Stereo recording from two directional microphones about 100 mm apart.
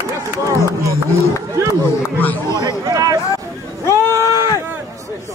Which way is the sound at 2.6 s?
40° right (ahead or behind).